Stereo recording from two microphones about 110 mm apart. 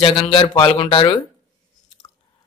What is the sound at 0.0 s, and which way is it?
A man's voice, 45° left (ahead or behind).